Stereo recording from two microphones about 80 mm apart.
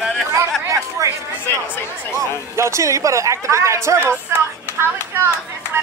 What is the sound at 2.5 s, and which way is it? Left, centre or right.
A man's voice, right.